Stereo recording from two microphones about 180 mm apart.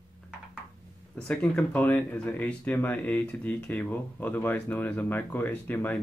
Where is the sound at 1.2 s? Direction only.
5° left (ahead or behind).